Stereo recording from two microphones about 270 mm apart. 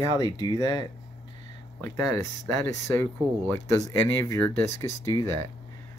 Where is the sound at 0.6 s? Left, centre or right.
Centre.